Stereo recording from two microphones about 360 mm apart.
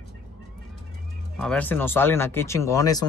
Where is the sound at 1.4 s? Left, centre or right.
Centre.